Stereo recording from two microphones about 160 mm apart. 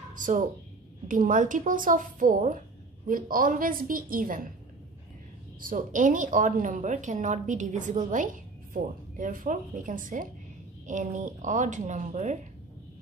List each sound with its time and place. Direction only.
0.2 s a woman's voice: 55° right (ahead or behind)
5.6 s a woman's voice: 60° right (ahead or behind)